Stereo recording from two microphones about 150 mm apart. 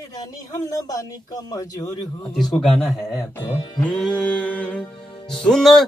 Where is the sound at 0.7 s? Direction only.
25° left (ahead or behind).